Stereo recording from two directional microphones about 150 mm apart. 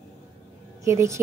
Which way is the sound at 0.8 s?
20° right (ahead or behind).